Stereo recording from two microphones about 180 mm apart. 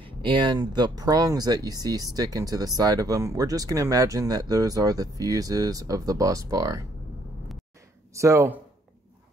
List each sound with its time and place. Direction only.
0.0 s speech: 30° right (ahead or behind)
8.1 s speech: 15° right (ahead or behind)